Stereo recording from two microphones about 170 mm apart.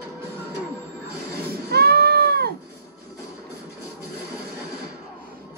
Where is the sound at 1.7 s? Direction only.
70° right (ahead or behind).